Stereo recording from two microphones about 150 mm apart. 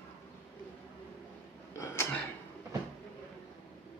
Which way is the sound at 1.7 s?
20° left (ahead or behind).